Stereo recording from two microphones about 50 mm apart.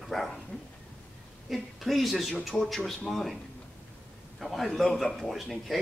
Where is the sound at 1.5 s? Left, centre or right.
Centre.